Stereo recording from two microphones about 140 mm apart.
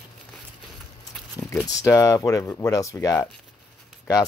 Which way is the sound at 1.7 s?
25° left (ahead or behind).